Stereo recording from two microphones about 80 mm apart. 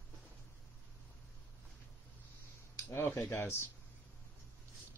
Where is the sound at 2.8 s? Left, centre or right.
Left.